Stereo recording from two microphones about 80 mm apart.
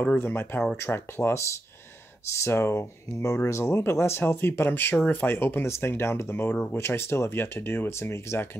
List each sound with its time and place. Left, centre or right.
0.2 s speech: left